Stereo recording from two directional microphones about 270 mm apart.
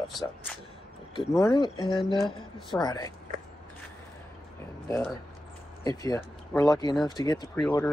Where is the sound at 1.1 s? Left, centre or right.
Centre.